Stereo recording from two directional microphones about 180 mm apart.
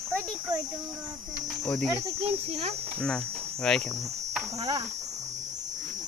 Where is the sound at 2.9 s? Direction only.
5° left (ahead or behind).